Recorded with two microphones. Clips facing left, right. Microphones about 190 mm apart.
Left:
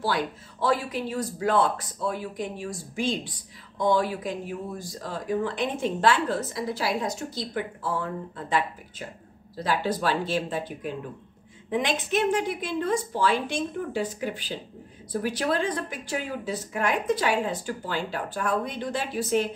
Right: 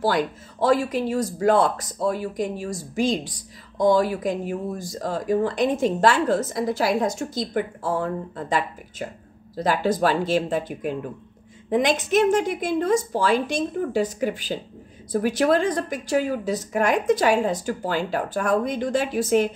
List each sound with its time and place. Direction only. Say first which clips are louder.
0.0 s speech: right 5 dB; 45° right (ahead or behind)